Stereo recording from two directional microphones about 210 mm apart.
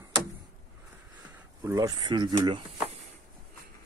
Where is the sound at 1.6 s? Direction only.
15° right (ahead or behind).